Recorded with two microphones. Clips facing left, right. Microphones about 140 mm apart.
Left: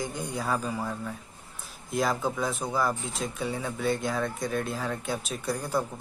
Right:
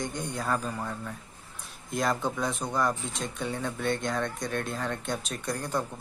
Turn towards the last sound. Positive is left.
turn(degrees=5)  # may be behind; listen again after turning